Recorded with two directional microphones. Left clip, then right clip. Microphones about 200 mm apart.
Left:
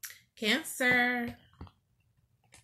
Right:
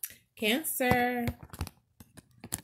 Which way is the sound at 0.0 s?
35° right (ahead or behind).